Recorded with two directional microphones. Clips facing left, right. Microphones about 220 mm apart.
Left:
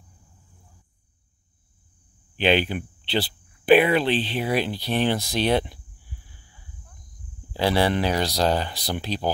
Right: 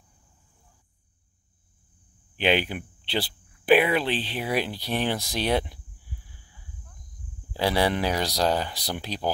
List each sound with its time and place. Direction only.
2.3 s speech: 10° right (ahead or behind)
7.5 s speech: 10° right (ahead or behind)